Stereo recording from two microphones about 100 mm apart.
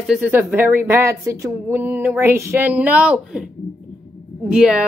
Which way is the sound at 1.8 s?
20° right (ahead or behind).